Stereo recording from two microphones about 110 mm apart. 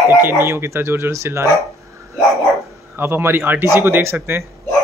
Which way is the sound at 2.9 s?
20° right (ahead or behind).